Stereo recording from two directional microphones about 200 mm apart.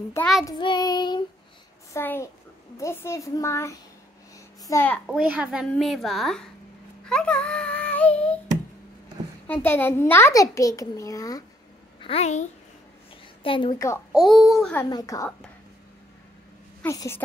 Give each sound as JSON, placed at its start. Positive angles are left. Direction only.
{"t": 0.5, "sound": "child singing", "side_deg": 20}
{"t": 2.0, "sound": "a child's voice", "side_deg": 10}
{"t": 5.0, "sound": "a woman's voice", "side_deg": -5}
{"t": 7.1, "sound": "child singing", "side_deg": 5}
{"t": 9.5, "sound": "a child's voice", "side_deg": 10}
{"t": 12.0, "sound": "a child's voice", "side_deg": 30}
{"t": 13.4, "sound": "child singing", "side_deg": 25}
{"t": 14.1, "sound": "a woman's voice", "side_deg": 0}
{"t": 14.9, "sound": "a child's voice", "side_deg": 20}
{"t": 16.8, "sound": "a child's voice", "side_deg": 15}